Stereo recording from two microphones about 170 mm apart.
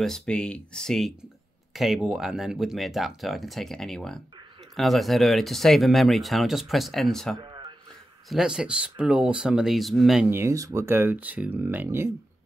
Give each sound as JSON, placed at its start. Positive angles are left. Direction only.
{"t": 0.0, "sound": "speech", "side_deg": 5}
{"t": 7.4, "sound": "a sound", "side_deg": -25}
{"t": 8.3, "sound": "speech", "side_deg": -5}
{"t": 10.3, "sound": "speech", "side_deg": -20}